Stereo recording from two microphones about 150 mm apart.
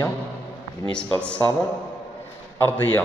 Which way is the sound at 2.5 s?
15° left (ahead or behind).